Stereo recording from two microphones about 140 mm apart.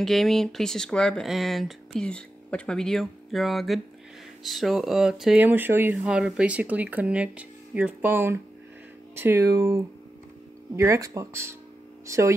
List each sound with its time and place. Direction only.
0.0 s speech: centre (ahead or behind)
5.4 s speech: 15° right (ahead or behind)